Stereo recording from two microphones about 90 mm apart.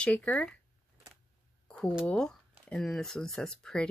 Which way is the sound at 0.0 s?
15° left (ahead or behind).